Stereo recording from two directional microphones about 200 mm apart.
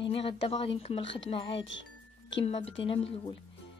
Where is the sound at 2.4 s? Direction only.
30° left (ahead or behind).